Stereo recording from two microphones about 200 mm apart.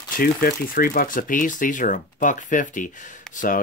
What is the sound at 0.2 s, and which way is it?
Speech, 45° left (ahead or behind).